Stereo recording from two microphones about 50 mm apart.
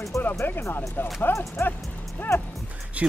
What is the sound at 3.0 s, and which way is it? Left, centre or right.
Speech, right.